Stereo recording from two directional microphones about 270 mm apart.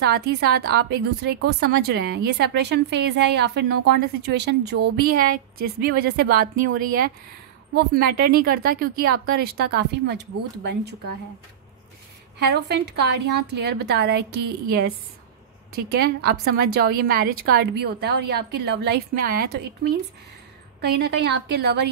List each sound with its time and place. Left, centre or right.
0.0 s a woman's voice: right
12.4 s a woman's voice: right
15.9 s a woman's voice: right